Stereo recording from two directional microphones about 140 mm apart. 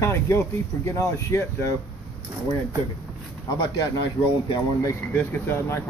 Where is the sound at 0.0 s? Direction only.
15° left (ahead or behind).